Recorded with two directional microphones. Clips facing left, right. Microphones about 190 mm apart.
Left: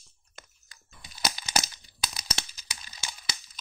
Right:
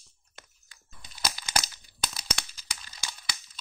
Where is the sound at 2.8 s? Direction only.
25° left (ahead or behind).